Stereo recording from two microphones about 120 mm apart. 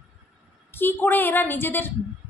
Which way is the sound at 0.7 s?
15° left (ahead or behind).